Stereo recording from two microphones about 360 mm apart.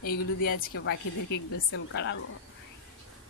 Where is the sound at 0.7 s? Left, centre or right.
Left.